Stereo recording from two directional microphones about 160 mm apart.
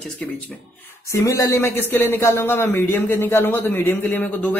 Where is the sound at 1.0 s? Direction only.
20° left (ahead or behind).